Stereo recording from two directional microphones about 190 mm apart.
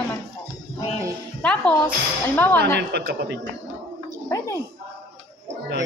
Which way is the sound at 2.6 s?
60° right (ahead or behind).